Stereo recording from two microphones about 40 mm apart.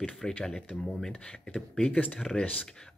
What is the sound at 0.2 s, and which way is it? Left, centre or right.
Speech, centre.